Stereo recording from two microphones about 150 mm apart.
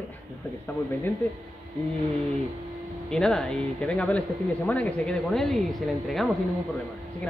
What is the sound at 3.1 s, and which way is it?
Speech, 5° left (ahead or behind).